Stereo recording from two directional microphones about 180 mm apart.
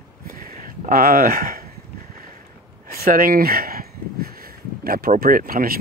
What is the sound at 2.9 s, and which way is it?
Speech, 50° right (ahead or behind).